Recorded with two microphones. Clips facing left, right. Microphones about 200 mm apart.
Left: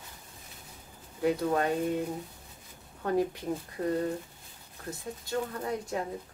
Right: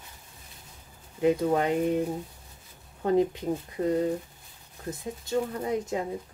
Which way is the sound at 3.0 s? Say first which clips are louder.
Right 5 dB; 20° right (ahead or behind).